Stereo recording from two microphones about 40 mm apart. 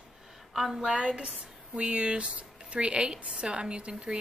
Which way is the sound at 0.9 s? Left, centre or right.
Right.